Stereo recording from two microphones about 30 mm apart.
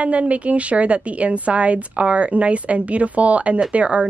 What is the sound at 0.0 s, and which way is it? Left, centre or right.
A woman's voice, right.